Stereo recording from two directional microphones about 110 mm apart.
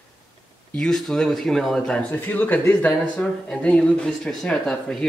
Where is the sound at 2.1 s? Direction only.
15° left (ahead or behind).